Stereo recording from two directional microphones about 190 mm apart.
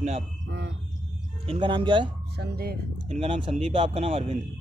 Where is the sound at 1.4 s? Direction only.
25° right (ahead or behind).